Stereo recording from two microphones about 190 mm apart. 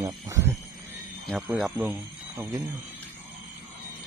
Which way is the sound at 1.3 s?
Centre (ahead or behind).